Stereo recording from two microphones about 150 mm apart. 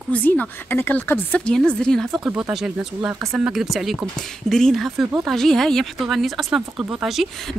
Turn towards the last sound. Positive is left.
turn(degrees=0)  # may be behind; listen again after turning